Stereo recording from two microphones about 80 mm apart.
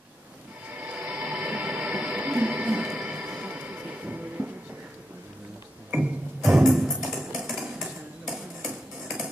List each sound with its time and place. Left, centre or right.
0.7 s a sound: centre
3.0 s music: centre
6.4 s music: centre
7.8 s hammer: centre